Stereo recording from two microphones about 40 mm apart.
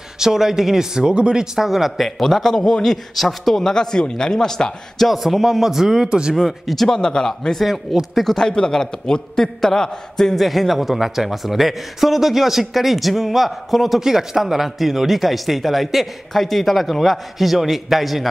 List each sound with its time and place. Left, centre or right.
0.2 s speech: centre
1.4 s a man's voice: centre
5.0 s speech: centre
6.3 s speech: centre
7.0 s a man's voice: centre
7.5 s a man's voice: centre
10.3 s speech: centre